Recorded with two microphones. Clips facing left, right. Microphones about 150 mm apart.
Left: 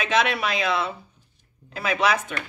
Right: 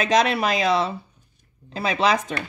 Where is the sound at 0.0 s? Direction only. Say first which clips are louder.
Right 3 dB; 40° right (ahead or behind).